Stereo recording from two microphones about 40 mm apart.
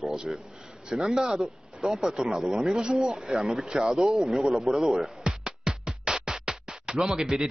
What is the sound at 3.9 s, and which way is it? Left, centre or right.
Speech, centre.